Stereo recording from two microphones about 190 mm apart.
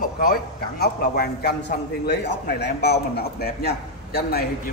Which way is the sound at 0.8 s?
55° left (ahead or behind).